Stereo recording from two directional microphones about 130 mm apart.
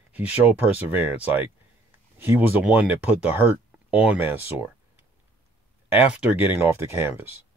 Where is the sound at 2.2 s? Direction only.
15° right (ahead or behind).